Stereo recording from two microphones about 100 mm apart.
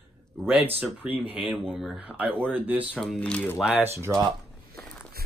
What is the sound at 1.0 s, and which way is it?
Speech, 10° right (ahead or behind).